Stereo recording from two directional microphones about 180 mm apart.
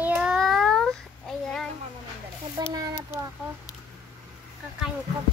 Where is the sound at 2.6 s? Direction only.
20° right (ahead or behind).